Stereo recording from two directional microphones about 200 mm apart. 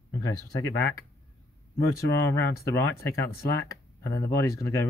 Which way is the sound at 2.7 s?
15° left (ahead or behind).